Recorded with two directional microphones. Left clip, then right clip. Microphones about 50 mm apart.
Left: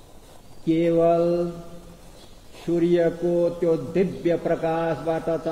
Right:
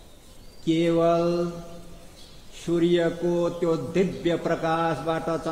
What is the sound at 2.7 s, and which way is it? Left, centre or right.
A man's voice, right.